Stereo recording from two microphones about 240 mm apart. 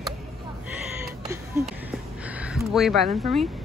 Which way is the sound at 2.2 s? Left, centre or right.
Centre.